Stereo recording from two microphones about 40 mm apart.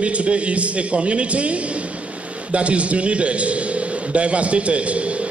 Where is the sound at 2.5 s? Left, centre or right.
Right.